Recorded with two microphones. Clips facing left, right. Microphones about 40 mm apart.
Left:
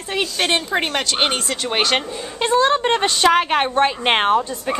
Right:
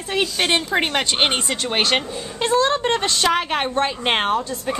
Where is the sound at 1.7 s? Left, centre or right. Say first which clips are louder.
Left 1 dB; centre.